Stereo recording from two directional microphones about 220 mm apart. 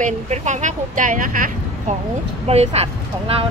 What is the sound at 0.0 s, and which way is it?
A woman's voice, 35° right (ahead or behind).